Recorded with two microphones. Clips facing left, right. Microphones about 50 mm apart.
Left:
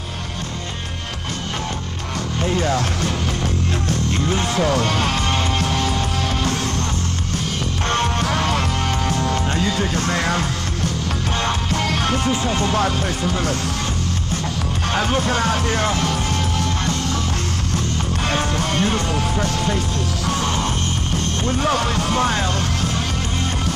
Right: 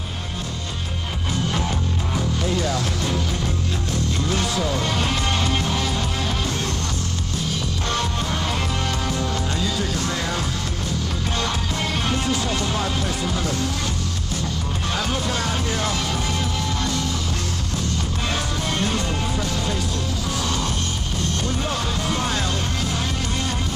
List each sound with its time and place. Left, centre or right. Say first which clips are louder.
2.3 s music: left 6 dB; left
4.3 s music: left 4 dB; left
4.8 s music: left 3 dB; left
8.2 s music: left 5 dB; left
9.3 s music: left 4 dB; left
12.3 s music: left 3 dB; left
12.7 s speech: left 5 dB; left
15.0 s speech: left 6 dB; left
16.1 s music: left 3 dB; left
18.8 s speech: left 3 dB; left
20.4 s music: left 3 dB; left
21.5 s speech: left 6 dB; left